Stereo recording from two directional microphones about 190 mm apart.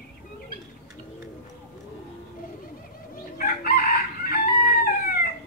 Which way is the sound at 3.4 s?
50° left (ahead or behind).